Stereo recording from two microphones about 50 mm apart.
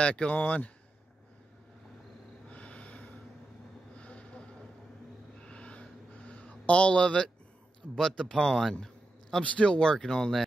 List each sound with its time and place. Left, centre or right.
0.0 s speech: left
2.5 s snort: left
4.0 s a sound: left
8.1 s speech: centre
8.7 s a sound: centre
9.4 s speech: centre